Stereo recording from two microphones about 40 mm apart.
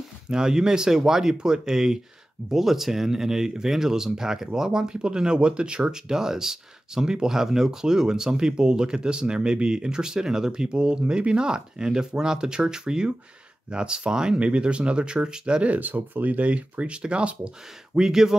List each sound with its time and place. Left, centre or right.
0.3 s speech: centre
14.4 s speech: right
15.7 s speech: right
17.9 s speech: centre